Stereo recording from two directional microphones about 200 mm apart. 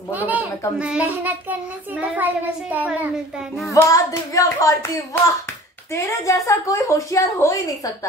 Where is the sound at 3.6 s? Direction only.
15° left (ahead or behind).